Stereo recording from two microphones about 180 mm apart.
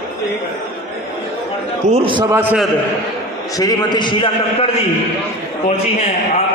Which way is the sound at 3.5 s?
20° left (ahead or behind).